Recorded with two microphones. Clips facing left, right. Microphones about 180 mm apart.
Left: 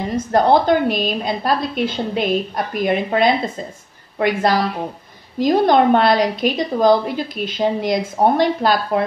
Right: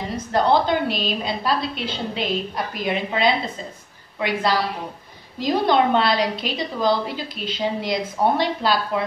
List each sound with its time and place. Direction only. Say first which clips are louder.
0.1 s a woman's voice: left 4 dB; 50° left (ahead or behind)